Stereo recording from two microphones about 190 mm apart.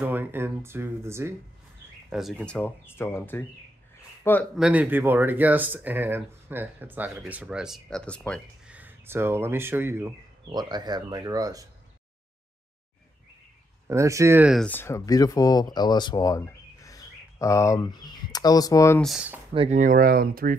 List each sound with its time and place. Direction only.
0.0 s speech: 10° right (ahead or behind)
2.0 s speech: centre (ahead or behind)
4.6 s speech: 5° right (ahead or behind)
8.6 s speech: 10° right (ahead or behind)
13.8 s speech: 15° right (ahead or behind)
14.6 s speech: 10° left (ahead or behind)
18.9 s speech: centre (ahead or behind)
19.5 s speech: 30° right (ahead or behind)
19.8 s speech: 50° right (ahead or behind)